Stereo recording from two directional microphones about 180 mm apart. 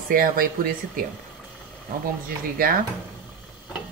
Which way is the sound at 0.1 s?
50° right (ahead or behind).